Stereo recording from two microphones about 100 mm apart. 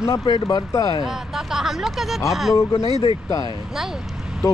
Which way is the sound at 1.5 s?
5° right (ahead or behind).